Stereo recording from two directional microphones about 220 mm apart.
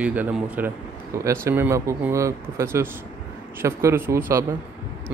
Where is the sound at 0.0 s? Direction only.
5° right (ahead or behind).